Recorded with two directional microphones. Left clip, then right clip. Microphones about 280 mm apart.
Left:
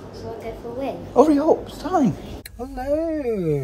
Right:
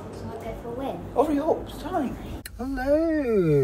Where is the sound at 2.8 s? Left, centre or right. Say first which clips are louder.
Even; centre.